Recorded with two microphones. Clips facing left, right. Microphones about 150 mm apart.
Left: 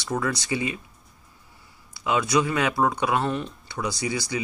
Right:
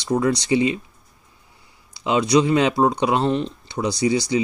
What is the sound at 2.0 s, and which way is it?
Speech, 20° right (ahead or behind).